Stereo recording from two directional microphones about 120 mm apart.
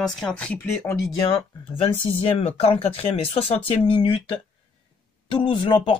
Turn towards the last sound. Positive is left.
turn(degrees=45)  # may be behind; listen again after turning